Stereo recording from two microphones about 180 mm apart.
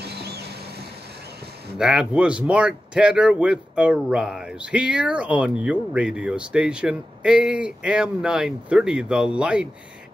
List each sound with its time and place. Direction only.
0.0 s vehicle: 65° right (ahead or behind)
1.8 s speech: 5° right (ahead or behind)